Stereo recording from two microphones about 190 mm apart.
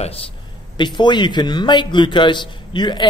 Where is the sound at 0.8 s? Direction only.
25° left (ahead or behind).